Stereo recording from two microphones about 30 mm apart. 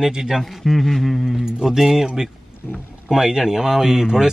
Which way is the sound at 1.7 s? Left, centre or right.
Centre.